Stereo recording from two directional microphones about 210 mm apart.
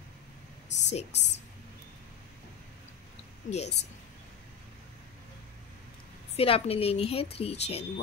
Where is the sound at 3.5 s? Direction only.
30° left (ahead or behind).